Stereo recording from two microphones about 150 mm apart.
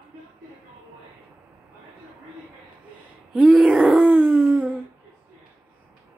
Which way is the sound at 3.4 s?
10° right (ahead or behind).